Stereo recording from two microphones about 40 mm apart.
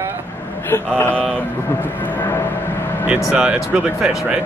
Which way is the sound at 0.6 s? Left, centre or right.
Left.